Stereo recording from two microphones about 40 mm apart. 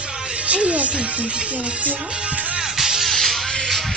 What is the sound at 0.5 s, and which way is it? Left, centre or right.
Speech, right.